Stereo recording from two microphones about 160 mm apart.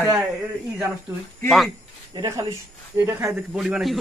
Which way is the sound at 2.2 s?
25° right (ahead or behind).